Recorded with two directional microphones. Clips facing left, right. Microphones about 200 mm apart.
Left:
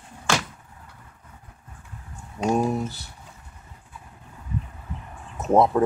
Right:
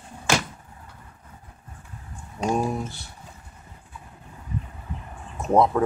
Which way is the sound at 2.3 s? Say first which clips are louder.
Left 2 dB; 5° left (ahead or behind).